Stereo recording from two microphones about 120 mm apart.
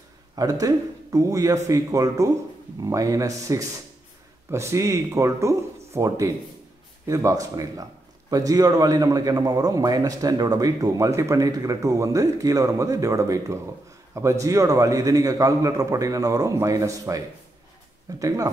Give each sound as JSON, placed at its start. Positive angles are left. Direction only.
{"t": 0.4, "sound": "a man's voice", "side_deg": -30}
{"t": 18.2, "sound": "a man's voice", "side_deg": -30}